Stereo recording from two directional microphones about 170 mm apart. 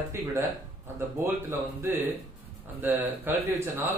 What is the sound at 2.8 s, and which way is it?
Speech, 10° right (ahead or behind).